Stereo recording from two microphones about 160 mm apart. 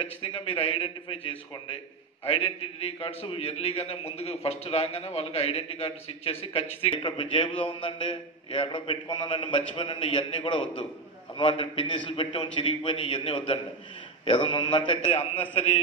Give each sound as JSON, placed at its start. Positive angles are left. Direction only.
{"t": 0.0, "sound": "a man's voice", "side_deg": 35}